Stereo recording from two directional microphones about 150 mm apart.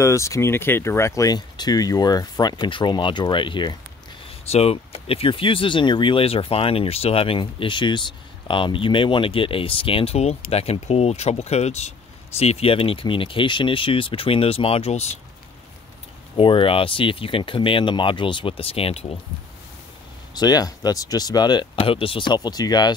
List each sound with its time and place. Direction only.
0.0 s speech: 20° left (ahead or behind)
4.5 s speech: 45° left (ahead or behind)
16.3 s speech: 35° left (ahead or behind)
20.3 s speech: 25° left (ahead or behind)